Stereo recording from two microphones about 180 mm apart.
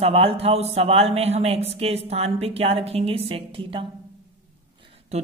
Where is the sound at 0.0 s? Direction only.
35° right (ahead or behind).